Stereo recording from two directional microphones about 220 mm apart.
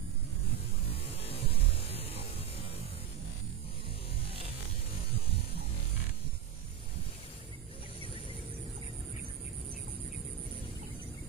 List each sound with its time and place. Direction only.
0.8 s music: 25° left (ahead or behind)